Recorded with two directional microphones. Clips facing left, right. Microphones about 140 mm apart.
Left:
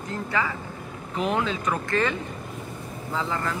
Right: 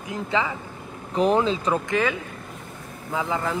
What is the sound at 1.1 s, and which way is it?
Speech, 35° right (ahead or behind).